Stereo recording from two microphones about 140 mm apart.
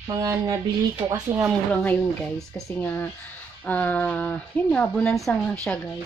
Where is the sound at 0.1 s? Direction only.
25° right (ahead or behind).